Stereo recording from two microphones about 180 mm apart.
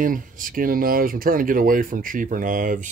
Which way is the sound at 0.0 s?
50° right (ahead or behind).